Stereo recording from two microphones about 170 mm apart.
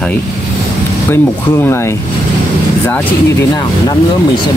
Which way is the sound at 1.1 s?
15° left (ahead or behind).